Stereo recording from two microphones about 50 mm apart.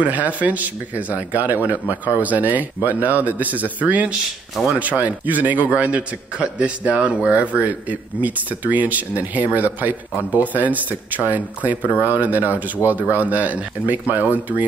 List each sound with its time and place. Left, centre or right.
0.0 s a man's voice: right